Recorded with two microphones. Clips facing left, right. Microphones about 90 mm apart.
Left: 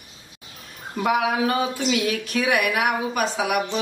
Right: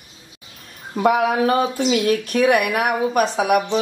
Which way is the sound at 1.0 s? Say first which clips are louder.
Right 4 dB; 40° right (ahead or behind).